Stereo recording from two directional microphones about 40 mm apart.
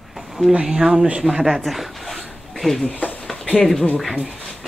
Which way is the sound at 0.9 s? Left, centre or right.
Right.